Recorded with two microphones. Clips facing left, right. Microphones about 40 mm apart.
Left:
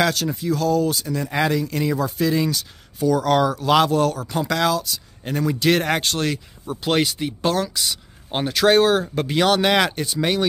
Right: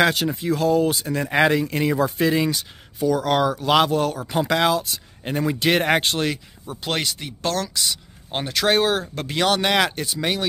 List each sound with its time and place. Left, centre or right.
0.0 s speech: right
3.0 s speech: centre
6.7 s speech: centre